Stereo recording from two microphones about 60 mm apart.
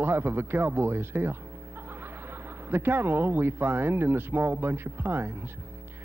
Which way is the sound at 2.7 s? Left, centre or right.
Right.